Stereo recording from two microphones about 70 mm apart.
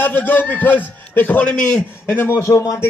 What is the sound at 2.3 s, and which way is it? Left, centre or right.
Speech, left.